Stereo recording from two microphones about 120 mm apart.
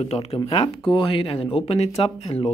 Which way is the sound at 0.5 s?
45° left (ahead or behind).